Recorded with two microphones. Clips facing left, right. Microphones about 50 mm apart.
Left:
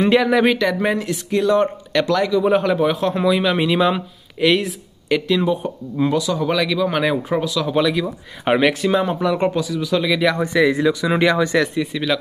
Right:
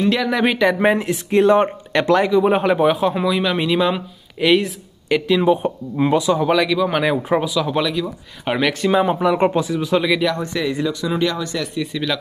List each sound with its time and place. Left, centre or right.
0.0 s speech: centre
0.3 s speech: centre
0.6 s speech: right; by 5.4 s centre
5.4 s speech: right
6.4 s speech: centre
8.0 s speech: centre
8.9 s speech: centre
10.0 s speech: centre
11.1 s speech: left
11.8 s speech: centre